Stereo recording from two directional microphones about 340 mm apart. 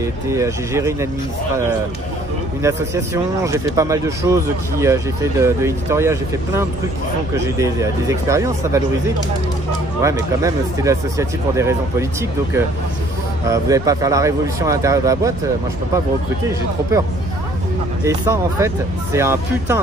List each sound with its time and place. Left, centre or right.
0.0 s speech: centre
2.6 s speech: centre
10.0 s speech: centre
18.0 s speech: centre